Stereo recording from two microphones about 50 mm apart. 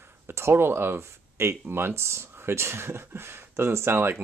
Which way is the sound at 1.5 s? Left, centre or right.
Right.